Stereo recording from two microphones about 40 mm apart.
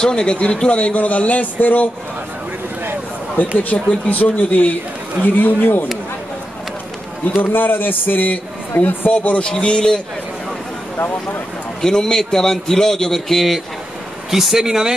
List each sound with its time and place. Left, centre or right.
0.0 s speech: left
3.3 s a man's voice: left
7.5 s a man's voice: left
9.1 s speech: left
11.8 s a man's voice: centre
14.3 s speech: centre